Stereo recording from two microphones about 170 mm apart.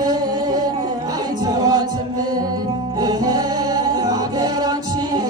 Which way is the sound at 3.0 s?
20° right (ahead or behind).